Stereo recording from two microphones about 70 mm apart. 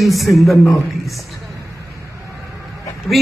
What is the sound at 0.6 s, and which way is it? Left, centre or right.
Speech, left.